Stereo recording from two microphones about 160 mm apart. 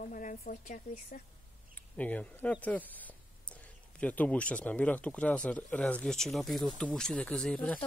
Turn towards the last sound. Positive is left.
turn(degrees=5)  # may be behind; listen again after turning